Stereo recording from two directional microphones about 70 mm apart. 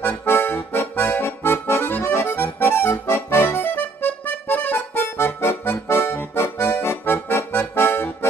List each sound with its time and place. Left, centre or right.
0.0 s accordion: left